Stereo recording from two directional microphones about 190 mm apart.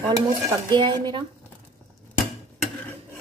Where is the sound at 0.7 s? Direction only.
25° right (ahead or behind).